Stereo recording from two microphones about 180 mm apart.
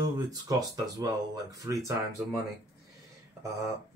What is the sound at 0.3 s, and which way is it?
Speech, 20° right (ahead or behind).